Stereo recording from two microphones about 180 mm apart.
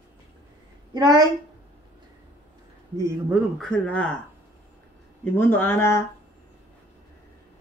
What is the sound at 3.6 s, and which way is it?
Speech, 5° left (ahead or behind).